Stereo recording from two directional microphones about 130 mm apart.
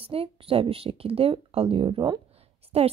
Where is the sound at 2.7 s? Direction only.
50° right (ahead or behind).